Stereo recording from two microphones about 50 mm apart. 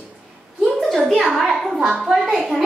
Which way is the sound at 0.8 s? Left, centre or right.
Centre.